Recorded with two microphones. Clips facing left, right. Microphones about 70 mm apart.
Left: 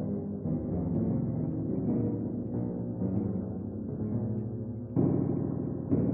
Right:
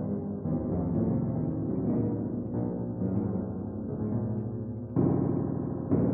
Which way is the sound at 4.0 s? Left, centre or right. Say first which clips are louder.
Right 1 dB; right.